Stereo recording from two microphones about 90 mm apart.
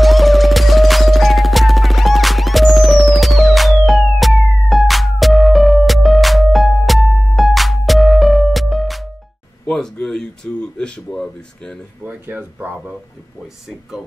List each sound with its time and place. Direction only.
0.0 s music: centre (ahead or behind)
9.7 s a sound: 5° left (ahead or behind)
12.0 s speech: 15° right (ahead or behind)
13.7 s speech: 5° right (ahead or behind)